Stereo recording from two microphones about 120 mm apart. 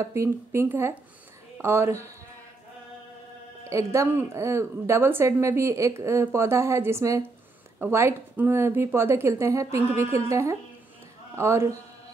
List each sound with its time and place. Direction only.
0.0 s speech: 25° right (ahead or behind)
3.6 s speech: 25° right (ahead or behind)